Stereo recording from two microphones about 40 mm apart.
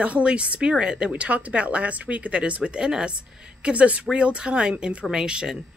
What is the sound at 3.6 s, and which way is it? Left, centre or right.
Speech, right.